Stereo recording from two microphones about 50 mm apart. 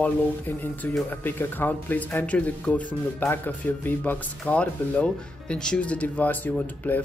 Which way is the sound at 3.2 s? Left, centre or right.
Left.